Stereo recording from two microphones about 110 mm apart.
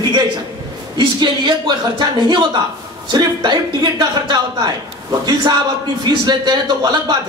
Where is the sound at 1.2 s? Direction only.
45° right (ahead or behind).